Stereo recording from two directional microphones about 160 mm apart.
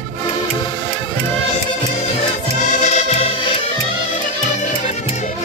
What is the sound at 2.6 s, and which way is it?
Music, 50° left (ahead or behind).